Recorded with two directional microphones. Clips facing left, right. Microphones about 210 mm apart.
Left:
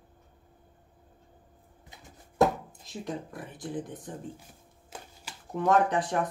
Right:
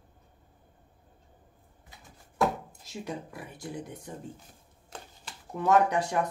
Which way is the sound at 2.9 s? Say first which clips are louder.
Left 1 dB; 10° right (ahead or behind).